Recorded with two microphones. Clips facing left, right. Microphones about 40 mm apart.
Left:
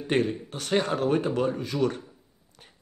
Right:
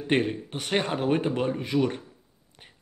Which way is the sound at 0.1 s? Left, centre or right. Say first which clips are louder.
Even; right.